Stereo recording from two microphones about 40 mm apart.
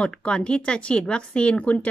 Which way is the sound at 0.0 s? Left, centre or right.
Left.